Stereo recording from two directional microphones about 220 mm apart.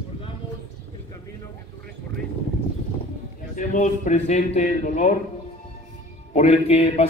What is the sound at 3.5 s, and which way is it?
A man's voice, 35° left (ahead or behind).